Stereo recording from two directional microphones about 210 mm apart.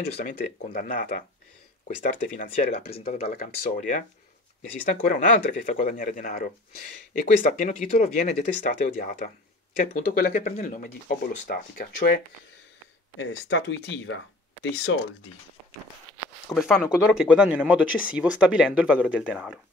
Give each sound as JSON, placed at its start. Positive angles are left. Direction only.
{"t": 0.1, "sound": "speech", "side_deg": 40}
{"t": 2.2, "sound": "speech", "side_deg": 40}
{"t": 13.2, "sound": "speech", "side_deg": 60}
{"t": 16.5, "sound": "speech", "side_deg": 0}